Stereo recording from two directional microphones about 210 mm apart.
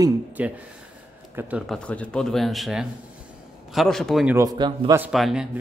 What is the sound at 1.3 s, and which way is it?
Speech, 5° right (ahead or behind).